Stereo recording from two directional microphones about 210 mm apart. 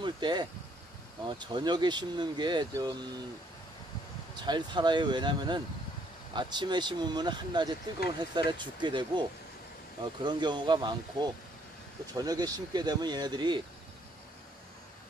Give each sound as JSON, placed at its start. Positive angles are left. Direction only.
{"t": 0.0, "sound": "speech", "side_deg": -20}
{"t": 4.4, "sound": "speech", "side_deg": -20}
{"t": 10.2, "sound": "speech", "side_deg": -20}